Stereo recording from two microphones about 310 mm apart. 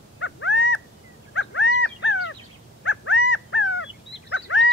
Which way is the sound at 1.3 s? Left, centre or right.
Left.